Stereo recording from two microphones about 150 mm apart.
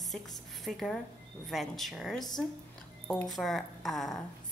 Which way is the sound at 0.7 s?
Centre (ahead or behind).